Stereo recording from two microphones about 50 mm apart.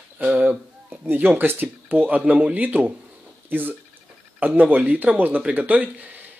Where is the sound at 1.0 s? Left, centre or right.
Right.